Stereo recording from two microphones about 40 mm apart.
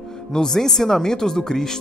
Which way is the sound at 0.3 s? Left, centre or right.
Centre.